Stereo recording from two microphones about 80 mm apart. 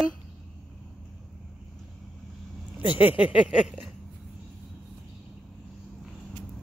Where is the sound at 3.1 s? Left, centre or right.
Centre.